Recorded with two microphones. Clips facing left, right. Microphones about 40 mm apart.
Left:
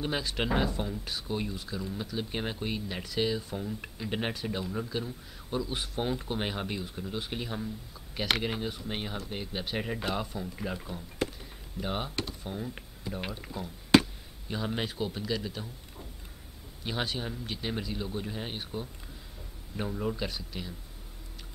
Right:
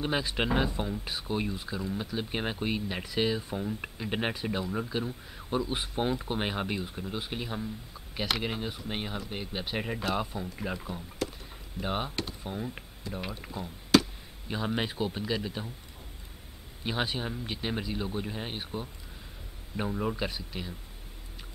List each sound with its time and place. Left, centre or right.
0.0 s speech: centre
13.9 s a sound: left
14.5 s speech: centre
16.8 s speech: centre